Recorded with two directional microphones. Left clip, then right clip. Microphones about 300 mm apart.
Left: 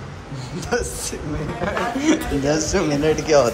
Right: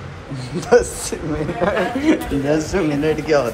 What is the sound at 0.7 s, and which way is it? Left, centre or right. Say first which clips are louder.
A man's voice: right 9 dB; centre.